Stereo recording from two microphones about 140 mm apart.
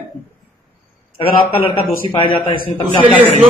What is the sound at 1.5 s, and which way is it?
Speech, 40° left (ahead or behind).